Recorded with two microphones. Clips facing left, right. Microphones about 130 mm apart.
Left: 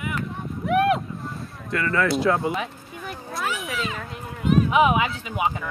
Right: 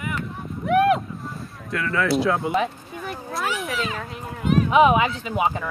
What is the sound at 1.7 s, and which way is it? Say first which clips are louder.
Speech: even; centre (ahead or behind).